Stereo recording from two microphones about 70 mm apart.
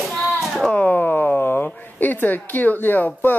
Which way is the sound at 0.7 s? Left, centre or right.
Left.